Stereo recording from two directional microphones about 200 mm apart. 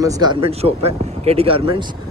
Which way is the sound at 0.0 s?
20° right (ahead or behind).